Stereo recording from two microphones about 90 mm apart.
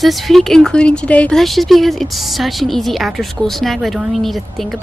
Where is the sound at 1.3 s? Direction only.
Centre (ahead or behind).